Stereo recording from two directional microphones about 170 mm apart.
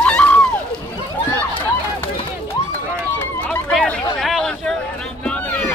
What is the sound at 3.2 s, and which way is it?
Run, 10° left (ahead or behind).